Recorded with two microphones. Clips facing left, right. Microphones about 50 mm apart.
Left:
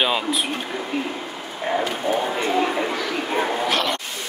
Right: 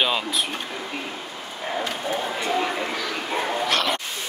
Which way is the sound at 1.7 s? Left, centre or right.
Centre.